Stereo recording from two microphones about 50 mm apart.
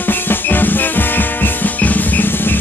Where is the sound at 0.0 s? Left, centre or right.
Left.